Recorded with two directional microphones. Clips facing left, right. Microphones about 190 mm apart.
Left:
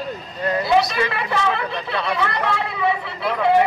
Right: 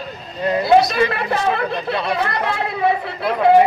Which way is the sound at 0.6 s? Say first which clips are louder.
Right 5 dB; 40° right (ahead or behind).